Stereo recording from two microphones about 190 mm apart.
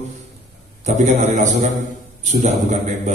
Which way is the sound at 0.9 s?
40° right (ahead or behind).